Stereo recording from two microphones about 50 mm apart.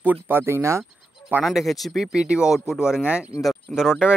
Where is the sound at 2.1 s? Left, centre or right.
Centre.